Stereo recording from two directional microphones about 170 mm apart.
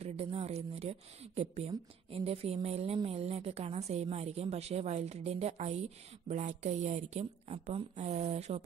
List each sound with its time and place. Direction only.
0.0 s speech: 35° right (ahead or behind)